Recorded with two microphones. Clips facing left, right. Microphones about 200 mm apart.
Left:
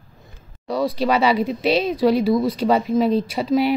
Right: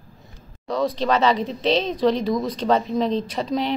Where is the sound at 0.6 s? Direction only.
10° left (ahead or behind).